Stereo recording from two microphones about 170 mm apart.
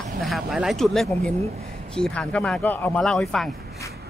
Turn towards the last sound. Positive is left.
turn(degrees=5)  # may be behind; listen again after turning